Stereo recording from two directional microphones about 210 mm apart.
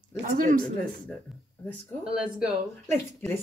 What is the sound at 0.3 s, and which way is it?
Speech, 35° right (ahead or behind).